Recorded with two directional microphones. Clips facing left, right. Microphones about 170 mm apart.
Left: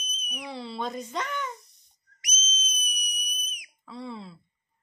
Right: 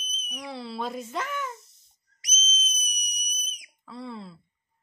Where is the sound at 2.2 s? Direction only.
30° right (ahead or behind).